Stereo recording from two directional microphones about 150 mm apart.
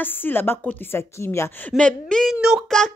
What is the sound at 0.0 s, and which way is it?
A woman's voice, 15° left (ahead or behind).